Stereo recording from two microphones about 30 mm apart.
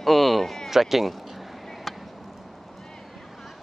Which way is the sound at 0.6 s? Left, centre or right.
Centre.